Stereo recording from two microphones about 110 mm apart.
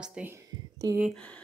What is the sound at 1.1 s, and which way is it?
Speech, 10° left (ahead or behind).